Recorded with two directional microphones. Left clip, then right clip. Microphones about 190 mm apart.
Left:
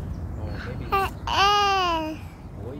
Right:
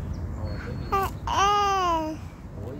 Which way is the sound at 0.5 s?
10° left (ahead or behind).